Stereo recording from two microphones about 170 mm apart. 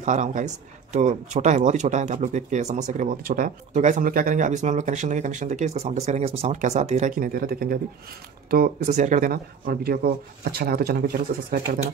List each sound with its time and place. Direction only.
0.0 s speech: 45° right (ahead or behind); by 8.6 s 60° right (ahead or behind)
8.8 s speech: 45° right (ahead or behind); by 11.1 s 60° right (ahead or behind)
11.7 s speech: 50° right (ahead or behind)